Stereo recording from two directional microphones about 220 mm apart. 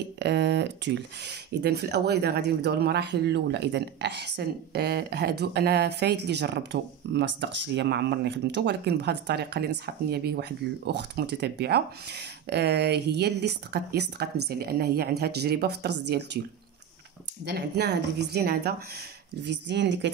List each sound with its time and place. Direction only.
0.2 s speech: 50° right (ahead or behind)
17.5 s speech: 50° right (ahead or behind)